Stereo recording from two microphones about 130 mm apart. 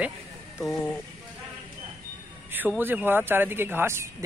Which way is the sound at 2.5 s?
15° right (ahead or behind).